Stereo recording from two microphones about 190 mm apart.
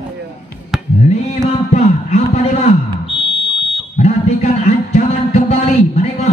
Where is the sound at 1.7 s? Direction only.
35° left (ahead or behind).